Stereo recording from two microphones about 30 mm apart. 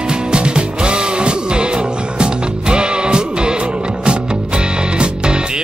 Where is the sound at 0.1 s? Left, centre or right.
Right.